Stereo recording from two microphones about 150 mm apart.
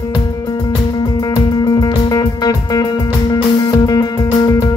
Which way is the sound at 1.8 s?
25° left (ahead or behind).